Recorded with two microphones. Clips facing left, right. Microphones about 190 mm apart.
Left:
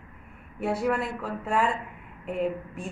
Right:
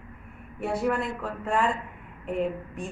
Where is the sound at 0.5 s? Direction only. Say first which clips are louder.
Even; centre (ahead or behind).